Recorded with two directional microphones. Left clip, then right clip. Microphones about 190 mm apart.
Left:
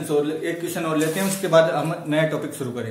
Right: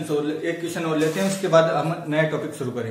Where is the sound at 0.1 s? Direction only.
25° left (ahead or behind).